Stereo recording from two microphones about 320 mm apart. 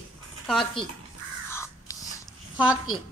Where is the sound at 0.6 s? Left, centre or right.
Centre.